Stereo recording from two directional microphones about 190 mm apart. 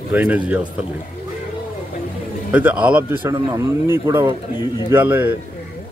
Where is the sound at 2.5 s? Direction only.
10° right (ahead or behind).